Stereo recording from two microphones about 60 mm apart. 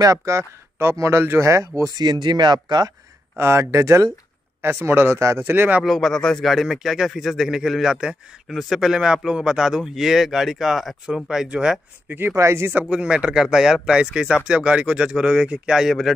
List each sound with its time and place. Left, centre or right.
0.0 s speech: right
1.4 s speech: right
3.3 s speech: right
4.6 s speech: right
5.2 s speech: right
5.5 s speech: right
5.9 s a man's voice: centre
6.5 s a man's voice: centre
11.2 s speech: centre
12.1 s speech: right
12.4 s speech: right
12.9 s speech: centre
13.4 s speech: centre